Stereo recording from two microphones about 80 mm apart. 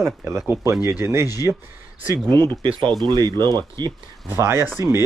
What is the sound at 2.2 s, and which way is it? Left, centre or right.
Speech, left.